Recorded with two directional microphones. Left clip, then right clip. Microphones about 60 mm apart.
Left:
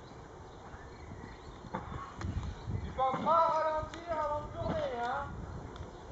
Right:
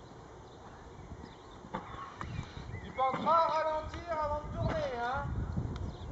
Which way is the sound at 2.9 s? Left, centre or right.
Centre.